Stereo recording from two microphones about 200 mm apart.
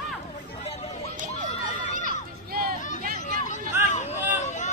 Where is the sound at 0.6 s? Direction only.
30° left (ahead or behind).